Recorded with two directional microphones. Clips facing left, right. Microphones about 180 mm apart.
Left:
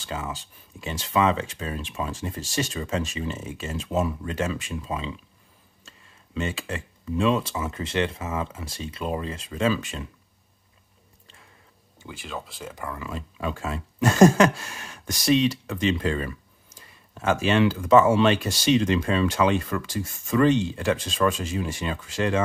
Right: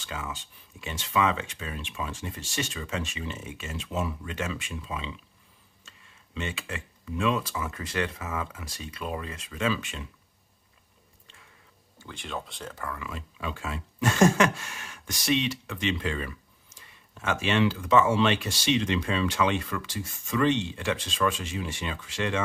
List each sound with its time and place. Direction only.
0.0 s speech: 35° left (ahead or behind)
12.1 s speech: centre (ahead or behind)
12.9 s speech: 35° left (ahead or behind)